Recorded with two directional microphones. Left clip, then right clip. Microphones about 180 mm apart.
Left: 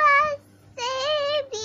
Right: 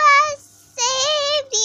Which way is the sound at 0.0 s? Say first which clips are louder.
Right 5 dB; 30° right (ahead or behind).